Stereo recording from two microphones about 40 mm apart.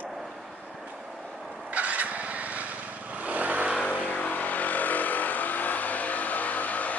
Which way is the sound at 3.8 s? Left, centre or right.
Left.